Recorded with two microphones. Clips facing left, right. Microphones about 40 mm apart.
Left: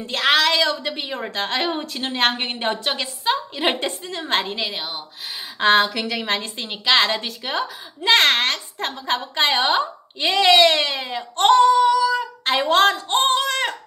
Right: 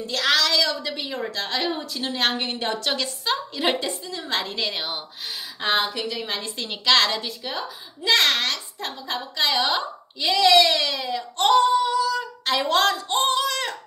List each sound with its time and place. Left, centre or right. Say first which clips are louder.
0.0 s a woman's voice: left 4 dB; left
3.8 s a woman's voice: left 3 dB; left
4.7 s speech: even; centre
5.6 s a woman's voice: left 7 dB; left
6.5 s a woman's voice: even; centre
7.1 s a woman's voice: left 3 dB; left
12.1 s a woman's voice: left 3 dB; left